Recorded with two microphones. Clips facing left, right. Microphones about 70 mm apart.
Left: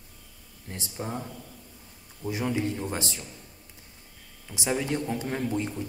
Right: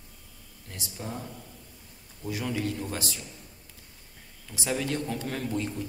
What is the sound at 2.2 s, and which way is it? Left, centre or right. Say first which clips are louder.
A man's voice: left 3 dB; left.